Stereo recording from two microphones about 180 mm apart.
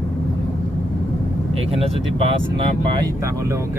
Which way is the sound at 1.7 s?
30° right (ahead or behind).